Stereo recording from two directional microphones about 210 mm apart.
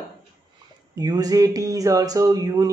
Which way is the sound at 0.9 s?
20° right (ahead or behind).